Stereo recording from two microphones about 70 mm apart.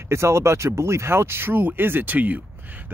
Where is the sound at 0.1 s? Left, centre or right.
Right.